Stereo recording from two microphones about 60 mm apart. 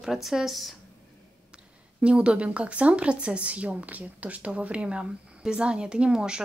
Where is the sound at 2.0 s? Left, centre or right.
Centre.